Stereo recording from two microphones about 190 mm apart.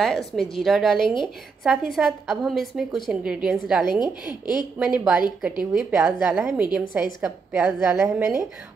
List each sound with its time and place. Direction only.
0.0 s a woman's voice: centre (ahead or behind)
1.0 s speech: 25° left (ahead or behind)
1.6 s a woman's voice: 5° right (ahead or behind)
4.0 s speech: 20° left (ahead or behind)
4.7 s a woman's voice: 5° right (ahead or behind)